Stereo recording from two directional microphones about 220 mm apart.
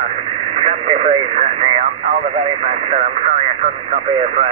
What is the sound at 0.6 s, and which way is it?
Speech, 30° right (ahead or behind).